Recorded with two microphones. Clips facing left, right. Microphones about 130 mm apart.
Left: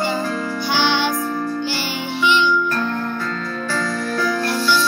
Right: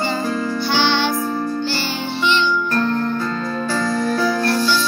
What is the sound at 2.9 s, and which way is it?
Music, 25° right (ahead or behind).